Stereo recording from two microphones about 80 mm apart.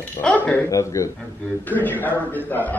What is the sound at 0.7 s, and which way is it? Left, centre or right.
Speech, left.